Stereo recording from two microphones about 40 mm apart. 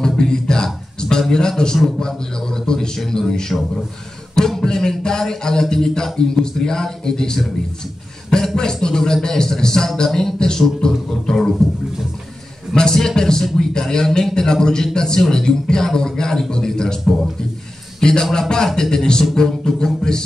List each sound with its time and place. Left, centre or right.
0.0 s music: centre
1.3 s a man's voice: centre
4.6 s a man's voice: centre
12.7 s a man's voice: centre